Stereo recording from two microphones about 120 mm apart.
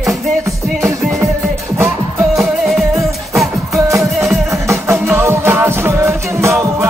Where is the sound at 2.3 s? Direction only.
5° right (ahead or behind).